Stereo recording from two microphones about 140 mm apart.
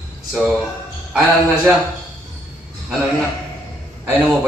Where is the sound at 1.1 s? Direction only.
5° right (ahead or behind).